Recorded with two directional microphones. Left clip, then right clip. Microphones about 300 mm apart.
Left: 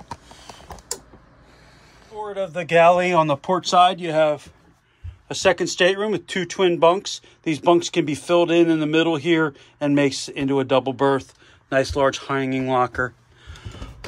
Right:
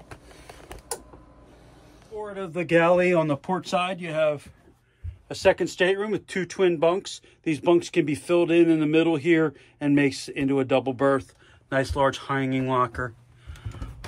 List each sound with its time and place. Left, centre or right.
2.3 s speech: centre